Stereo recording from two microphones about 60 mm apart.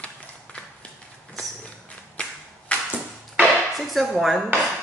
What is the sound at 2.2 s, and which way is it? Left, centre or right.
Clapping, left.